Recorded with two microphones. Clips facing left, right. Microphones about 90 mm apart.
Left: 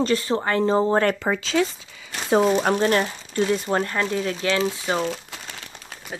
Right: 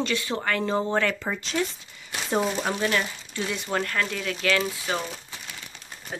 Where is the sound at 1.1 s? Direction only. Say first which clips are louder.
Left 6 dB; 90° left.